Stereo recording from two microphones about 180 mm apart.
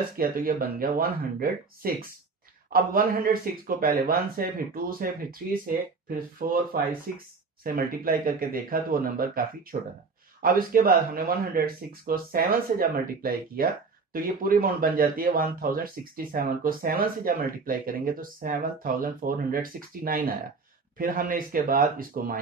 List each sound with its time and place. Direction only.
0.2 s speech: 55° right (ahead or behind)